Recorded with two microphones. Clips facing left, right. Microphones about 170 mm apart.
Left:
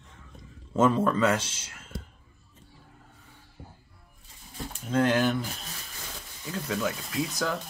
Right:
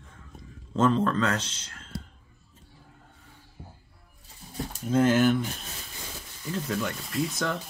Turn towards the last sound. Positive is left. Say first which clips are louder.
# right 1 dB
turn(degrees=0)  # may be behind; listen again after turning